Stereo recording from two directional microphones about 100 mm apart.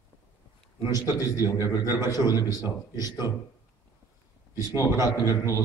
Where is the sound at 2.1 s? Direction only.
40° left (ahead or behind).